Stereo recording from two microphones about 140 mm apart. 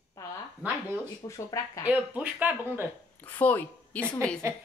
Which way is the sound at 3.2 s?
10° left (ahead or behind).